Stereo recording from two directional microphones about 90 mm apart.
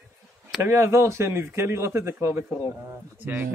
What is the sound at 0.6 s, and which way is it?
Speech, 30° right (ahead or behind).